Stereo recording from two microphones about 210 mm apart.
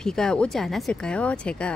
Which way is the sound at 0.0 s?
5° left (ahead or behind).